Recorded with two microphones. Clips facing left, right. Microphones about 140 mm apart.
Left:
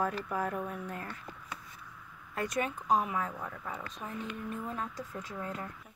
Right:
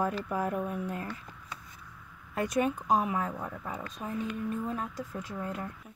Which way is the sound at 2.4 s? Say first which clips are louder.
Right 5 dB; 10° right (ahead or behind).